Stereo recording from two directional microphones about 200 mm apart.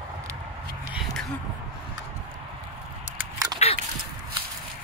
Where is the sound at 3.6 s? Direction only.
35° left (ahead or behind).